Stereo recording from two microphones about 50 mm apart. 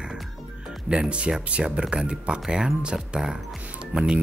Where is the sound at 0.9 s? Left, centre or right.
Right.